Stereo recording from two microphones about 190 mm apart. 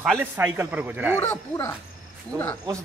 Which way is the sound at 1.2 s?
15° left (ahead or behind).